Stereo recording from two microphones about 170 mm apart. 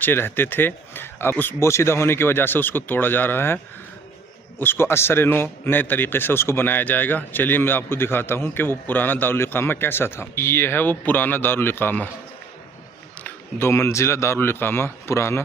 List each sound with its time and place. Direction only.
0.0 s a man's voice: 10° left (ahead or behind)
13.2 s a man's voice: 15° left (ahead or behind)